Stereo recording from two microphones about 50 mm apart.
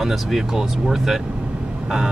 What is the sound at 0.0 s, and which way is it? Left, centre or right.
Speech, centre.